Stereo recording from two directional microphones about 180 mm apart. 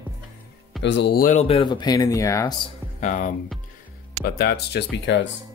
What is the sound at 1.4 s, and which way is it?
Speech, 30° left (ahead or behind).